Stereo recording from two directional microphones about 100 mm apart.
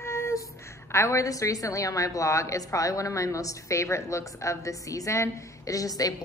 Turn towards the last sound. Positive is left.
turn(degrees=35)  # may be behind; listen again after turning